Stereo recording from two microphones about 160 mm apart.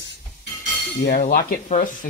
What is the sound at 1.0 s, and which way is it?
Cutlery, 70° left (ahead or behind).